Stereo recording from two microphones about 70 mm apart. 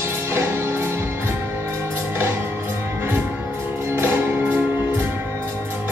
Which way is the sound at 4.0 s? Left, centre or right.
Right.